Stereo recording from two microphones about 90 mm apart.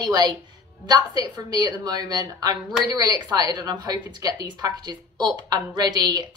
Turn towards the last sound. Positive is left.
turn(degrees=-50)  # may be behind; listen again after turning